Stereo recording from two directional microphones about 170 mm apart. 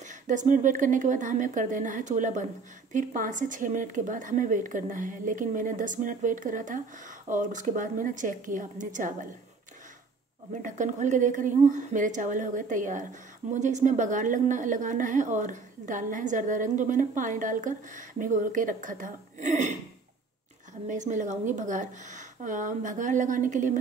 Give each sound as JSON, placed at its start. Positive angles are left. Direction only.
{"t": 0.0, "sound": "speech", "side_deg": -45}
{"t": 10.5, "sound": "speech", "side_deg": -50}
{"t": 20.9, "sound": "speech", "side_deg": -45}